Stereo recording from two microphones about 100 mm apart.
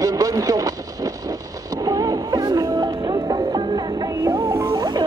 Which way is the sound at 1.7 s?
40° right (ahead or behind).